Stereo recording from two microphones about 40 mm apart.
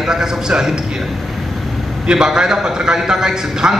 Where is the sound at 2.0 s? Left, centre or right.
Centre.